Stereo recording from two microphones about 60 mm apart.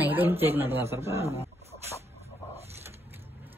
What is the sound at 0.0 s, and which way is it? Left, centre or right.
A woman's voice, right.